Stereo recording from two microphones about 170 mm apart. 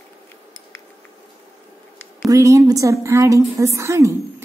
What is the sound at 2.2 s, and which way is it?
A woman's voice, 20° right (ahead or behind).